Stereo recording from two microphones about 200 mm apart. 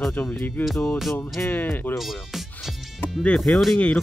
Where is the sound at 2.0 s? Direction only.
Centre (ahead or behind).